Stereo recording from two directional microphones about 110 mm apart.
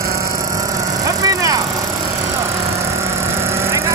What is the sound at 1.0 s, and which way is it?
Vehicle, 30° right (ahead or behind).